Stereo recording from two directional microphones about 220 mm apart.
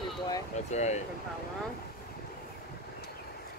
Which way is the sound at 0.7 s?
30° left (ahead or behind).